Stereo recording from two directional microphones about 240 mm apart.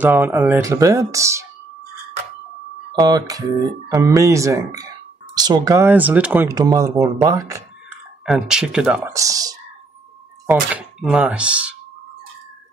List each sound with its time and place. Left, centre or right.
0.0 s speech: centre
3.0 s speech: centre
8.3 s speech: centre